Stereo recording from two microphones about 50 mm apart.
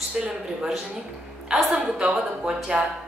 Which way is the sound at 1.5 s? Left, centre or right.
Centre.